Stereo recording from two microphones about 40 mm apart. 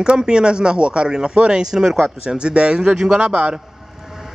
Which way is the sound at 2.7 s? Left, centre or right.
Centre.